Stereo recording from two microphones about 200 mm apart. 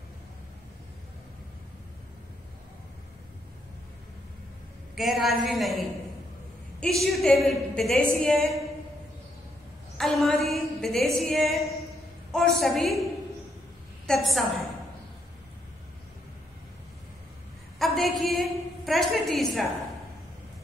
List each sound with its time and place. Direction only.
4.9 s a woman's voice: centre (ahead or behind)
9.9 s a woman's voice: centre (ahead or behind)
14.0 s a woman's voice: centre (ahead or behind)
17.7 s a sound: centre (ahead or behind)